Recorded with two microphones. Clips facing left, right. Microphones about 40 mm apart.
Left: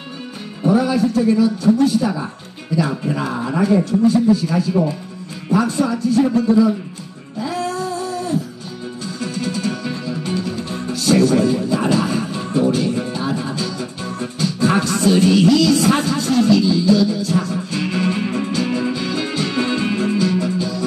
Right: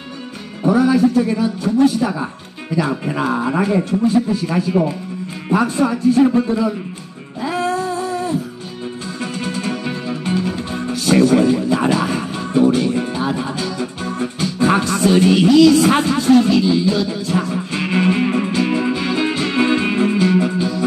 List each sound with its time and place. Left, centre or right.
0.7 s music: right
1.3 s speech: right
7.3 s a sound: right
9.2 s music: right